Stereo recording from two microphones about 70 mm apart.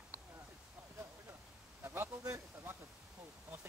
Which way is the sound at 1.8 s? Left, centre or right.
Right.